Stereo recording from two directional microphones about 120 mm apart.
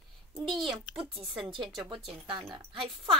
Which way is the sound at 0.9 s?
45° right (ahead or behind).